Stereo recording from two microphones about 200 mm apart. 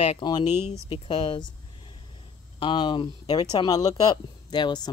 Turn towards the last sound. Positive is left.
turn(degrees=20)  # may be behind; listen again after turning